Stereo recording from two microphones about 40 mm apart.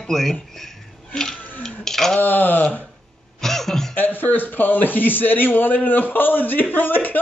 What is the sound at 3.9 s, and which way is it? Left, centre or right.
A man's voice, left.